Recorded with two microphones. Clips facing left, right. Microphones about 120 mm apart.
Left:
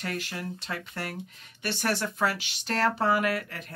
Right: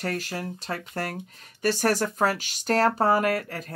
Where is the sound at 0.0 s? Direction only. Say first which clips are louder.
Right 4 dB; 40° right (ahead or behind).